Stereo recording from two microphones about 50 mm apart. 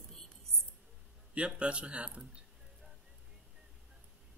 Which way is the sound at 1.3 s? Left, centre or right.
Right.